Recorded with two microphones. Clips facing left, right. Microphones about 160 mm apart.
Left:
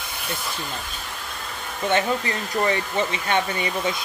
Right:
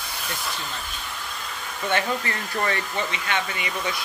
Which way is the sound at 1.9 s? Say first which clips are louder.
Left 3 dB; 20° left (ahead or behind).